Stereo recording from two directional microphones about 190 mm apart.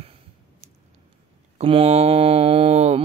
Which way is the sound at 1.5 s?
30° right (ahead or behind).